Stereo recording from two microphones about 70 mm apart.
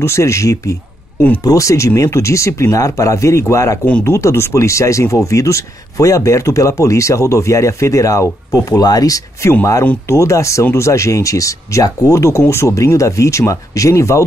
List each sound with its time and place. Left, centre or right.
0.0 s speech: left
10.0 s speech: left